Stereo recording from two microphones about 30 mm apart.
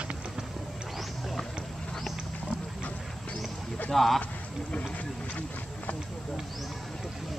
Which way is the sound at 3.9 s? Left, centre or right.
Centre.